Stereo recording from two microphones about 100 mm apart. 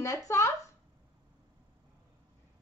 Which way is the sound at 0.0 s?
30° left (ahead or behind).